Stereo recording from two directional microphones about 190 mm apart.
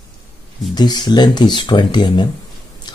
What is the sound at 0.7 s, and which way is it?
Speech, 20° left (ahead or behind).